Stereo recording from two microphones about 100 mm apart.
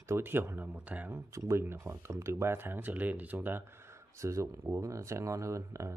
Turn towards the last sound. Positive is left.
turn(degrees=-30)  # may be behind; listen again after turning